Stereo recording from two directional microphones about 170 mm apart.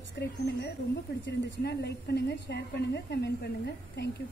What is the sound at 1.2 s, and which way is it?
A woman's voice, 75° left (ahead or behind).